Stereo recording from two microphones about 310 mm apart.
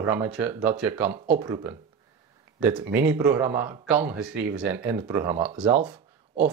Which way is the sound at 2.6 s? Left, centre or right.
Right.